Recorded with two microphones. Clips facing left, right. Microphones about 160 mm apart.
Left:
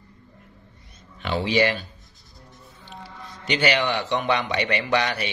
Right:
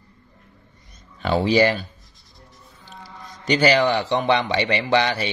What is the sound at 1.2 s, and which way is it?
Speech, 40° right (ahead or behind).